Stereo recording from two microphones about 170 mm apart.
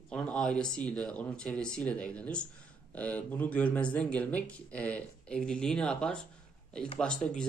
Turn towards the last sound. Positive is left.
turn(degrees=5)  # may be behind; listen again after turning